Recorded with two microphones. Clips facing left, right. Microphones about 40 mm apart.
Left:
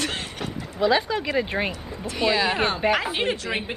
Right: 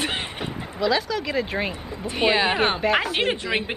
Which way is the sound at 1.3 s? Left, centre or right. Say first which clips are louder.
Left 1 dB; centre.